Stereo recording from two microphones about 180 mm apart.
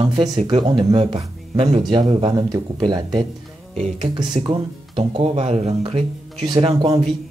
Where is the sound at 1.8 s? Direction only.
25° right (ahead or behind).